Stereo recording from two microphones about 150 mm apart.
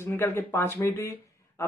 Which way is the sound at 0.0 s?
15° left (ahead or behind).